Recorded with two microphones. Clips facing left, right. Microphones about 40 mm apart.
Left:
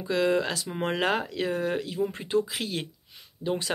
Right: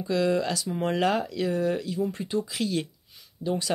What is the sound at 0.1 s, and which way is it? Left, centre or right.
Speech, left.